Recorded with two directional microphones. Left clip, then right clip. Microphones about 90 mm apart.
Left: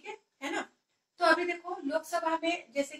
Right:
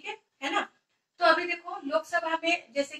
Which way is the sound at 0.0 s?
35° left (ahead or behind).